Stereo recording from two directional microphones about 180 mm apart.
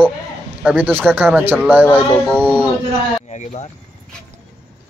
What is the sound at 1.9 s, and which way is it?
Speech, 5° left (ahead or behind).